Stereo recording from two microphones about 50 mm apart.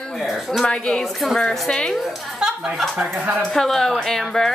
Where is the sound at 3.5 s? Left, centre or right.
Centre.